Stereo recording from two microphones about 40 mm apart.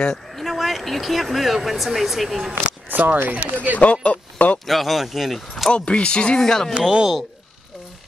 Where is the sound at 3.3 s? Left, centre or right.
Right.